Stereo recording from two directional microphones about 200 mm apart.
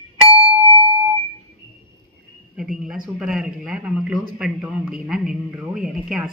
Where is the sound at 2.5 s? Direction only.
Centre (ahead or behind).